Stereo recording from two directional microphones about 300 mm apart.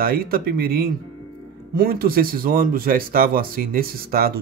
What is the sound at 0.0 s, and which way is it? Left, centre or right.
Speech, right.